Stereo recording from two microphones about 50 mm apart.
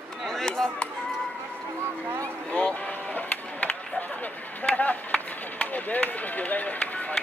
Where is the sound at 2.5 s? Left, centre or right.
Left.